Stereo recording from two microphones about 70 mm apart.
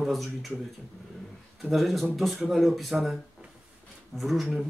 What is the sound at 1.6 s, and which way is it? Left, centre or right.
Speech, centre.